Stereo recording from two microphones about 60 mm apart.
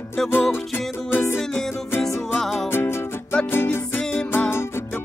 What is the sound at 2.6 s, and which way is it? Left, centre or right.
Music, left.